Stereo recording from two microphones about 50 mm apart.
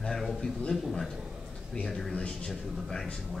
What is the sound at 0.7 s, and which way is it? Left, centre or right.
Speech, centre.